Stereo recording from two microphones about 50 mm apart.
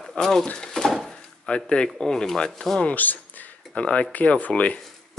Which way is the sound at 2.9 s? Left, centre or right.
Left.